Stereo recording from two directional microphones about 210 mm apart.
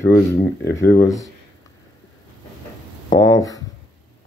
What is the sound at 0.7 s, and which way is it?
Speech, 10° left (ahead or behind).